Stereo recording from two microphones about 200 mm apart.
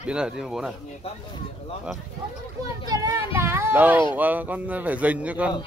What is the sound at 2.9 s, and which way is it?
A man's voice, 15° right (ahead or behind).